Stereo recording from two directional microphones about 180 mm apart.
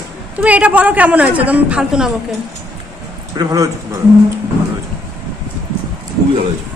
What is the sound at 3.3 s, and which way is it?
Speech, 20° right (ahead or behind).